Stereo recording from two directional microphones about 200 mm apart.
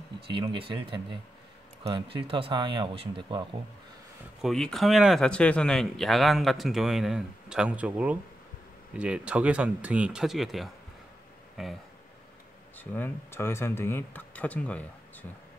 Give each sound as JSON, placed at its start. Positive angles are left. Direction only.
{"t": 0.3, "sound": "speech", "side_deg": -25}
{"t": 4.4, "sound": "speech", "side_deg": 0}
{"t": 12.7, "sound": "speech", "side_deg": 10}